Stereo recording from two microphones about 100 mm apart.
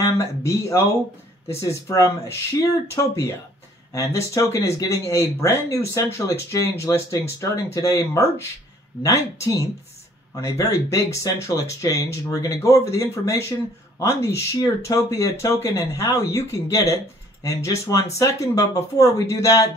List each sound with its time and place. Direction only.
0.0 s speech: 30° left (ahead or behind)